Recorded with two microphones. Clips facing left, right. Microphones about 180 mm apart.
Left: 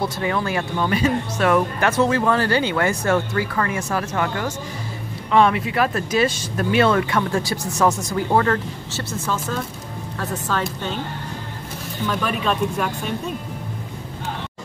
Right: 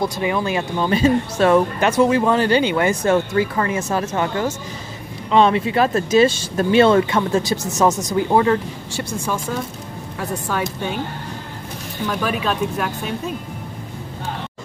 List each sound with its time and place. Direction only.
0.0 s speech: 20° right (ahead or behind)
1.9 s speech: 15° right (ahead or behind)
12.1 s speech: 5° right (ahead or behind)